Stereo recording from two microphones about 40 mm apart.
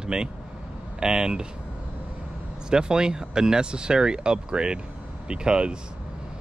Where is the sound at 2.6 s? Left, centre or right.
Centre.